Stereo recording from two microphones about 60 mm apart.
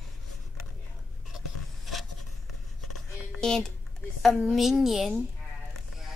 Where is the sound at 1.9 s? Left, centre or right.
Centre.